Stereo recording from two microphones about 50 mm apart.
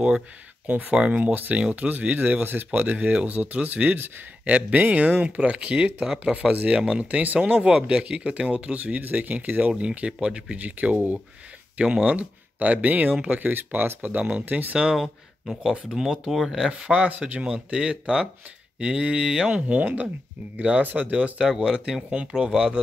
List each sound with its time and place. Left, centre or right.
0.7 s speech: right
11.8 s speech: right
15.0 s speech: centre
16.8 s speech: right
19.5 s speech: right
20.8 s speech: right
21.1 s speech: centre